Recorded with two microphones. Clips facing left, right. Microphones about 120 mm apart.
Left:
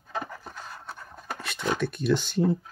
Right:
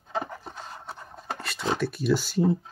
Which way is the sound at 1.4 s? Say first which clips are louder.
Left 2 dB; centre (ahead or behind).